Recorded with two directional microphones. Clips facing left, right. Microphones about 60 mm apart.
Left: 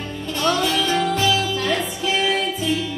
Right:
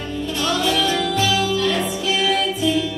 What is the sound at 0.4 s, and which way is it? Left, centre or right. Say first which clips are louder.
Music: left 1 dB; left.